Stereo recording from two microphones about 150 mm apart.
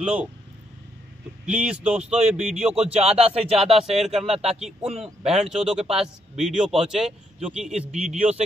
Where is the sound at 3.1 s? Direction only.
5° right (ahead or behind).